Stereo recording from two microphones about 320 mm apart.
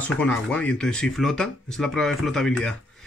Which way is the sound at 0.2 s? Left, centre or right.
Centre.